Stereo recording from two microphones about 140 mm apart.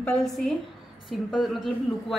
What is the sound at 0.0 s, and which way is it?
A woman's voice, 5° left (ahead or behind).